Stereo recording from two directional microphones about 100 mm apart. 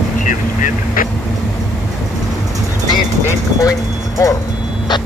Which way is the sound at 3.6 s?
35° left (ahead or behind).